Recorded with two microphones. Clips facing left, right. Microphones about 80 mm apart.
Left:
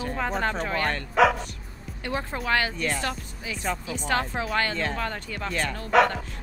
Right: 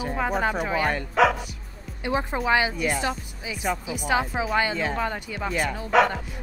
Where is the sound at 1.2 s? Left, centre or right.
Centre.